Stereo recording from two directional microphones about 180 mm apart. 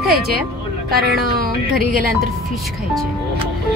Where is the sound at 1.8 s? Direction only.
50° right (ahead or behind).